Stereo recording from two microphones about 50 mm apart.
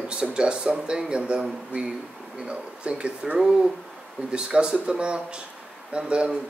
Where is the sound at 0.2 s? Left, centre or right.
Centre.